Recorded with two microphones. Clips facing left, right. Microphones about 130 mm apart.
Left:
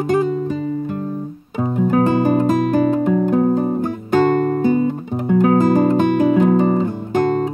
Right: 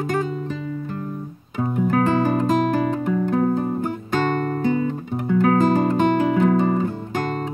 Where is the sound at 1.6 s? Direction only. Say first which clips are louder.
Left 4 dB; 25° left (ahead or behind).